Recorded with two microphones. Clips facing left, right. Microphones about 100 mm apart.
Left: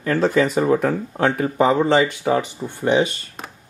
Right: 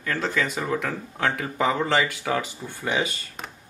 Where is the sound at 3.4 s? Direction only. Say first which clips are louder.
Left 3 dB; centre (ahead or behind).